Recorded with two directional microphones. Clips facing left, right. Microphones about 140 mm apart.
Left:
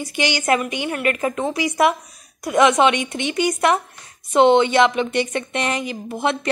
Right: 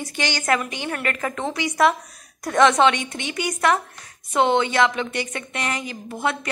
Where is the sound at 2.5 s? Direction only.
10° left (ahead or behind).